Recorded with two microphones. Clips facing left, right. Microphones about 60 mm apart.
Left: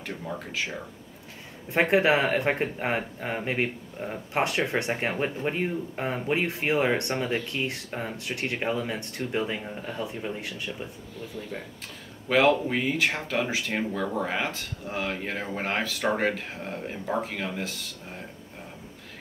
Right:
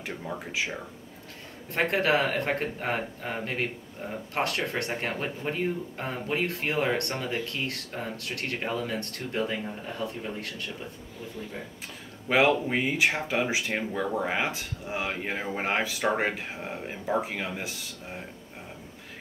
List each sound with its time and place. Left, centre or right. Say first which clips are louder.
0.0 s speech: even; centre
1.7 s speech: left 3 dB; centre
12.3 s speech: left 1 dB; centre